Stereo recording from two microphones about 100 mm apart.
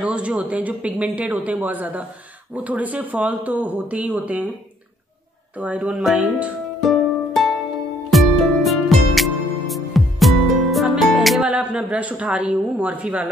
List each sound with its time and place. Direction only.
0.0 s speech: 10° right (ahead or behind)
5.6 s speech: 15° right (ahead or behind)
6.0 s music: 5° right (ahead or behind)
11.4 s speech: 10° right (ahead or behind)